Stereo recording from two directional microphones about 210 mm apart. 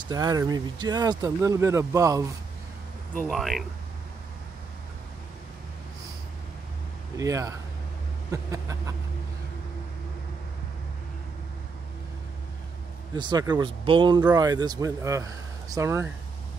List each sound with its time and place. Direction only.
0.1 s speech: 15° right (ahead or behind)
3.2 s speech: centre (ahead or behind)
7.2 s speech: 15° right (ahead or behind)
13.1 s speech: 20° right (ahead or behind)